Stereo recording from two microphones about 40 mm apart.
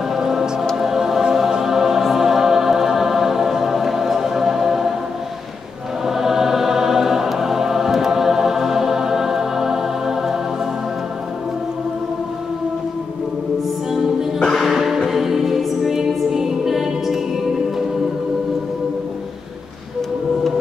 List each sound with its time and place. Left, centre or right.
0.1 s music: centre
0.7 s choir: centre
6.0 s choir: centre
14.6 s music: centre